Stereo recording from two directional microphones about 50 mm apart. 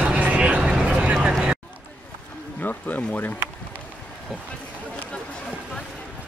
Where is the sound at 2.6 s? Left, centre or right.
Left.